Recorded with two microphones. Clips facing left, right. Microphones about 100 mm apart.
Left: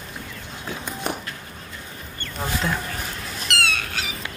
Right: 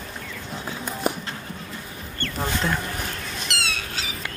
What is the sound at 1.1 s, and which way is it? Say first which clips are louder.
Walk: right 3 dB; 5° right (ahead or behind).